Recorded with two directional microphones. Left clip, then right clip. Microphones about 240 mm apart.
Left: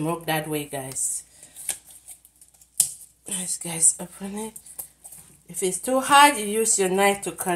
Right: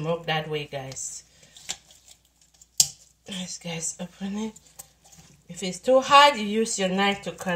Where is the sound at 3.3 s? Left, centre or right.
Left.